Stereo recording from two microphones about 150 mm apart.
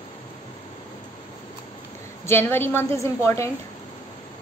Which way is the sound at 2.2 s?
15° left (ahead or behind).